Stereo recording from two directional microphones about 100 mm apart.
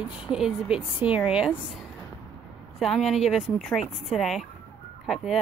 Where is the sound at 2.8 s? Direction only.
Centre (ahead or behind).